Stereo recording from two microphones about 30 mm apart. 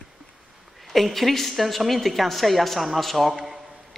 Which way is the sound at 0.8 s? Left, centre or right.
Centre.